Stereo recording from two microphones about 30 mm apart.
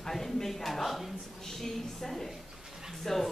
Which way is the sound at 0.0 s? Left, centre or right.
Centre.